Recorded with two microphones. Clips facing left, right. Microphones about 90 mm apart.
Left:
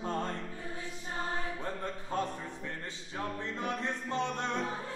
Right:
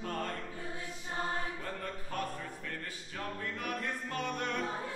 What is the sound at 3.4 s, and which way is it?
Music, 25° left (ahead or behind).